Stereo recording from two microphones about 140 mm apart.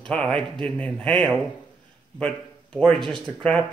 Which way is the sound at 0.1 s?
5° left (ahead or behind).